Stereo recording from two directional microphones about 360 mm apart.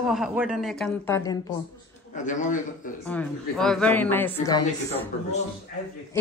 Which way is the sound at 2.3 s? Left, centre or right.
Left.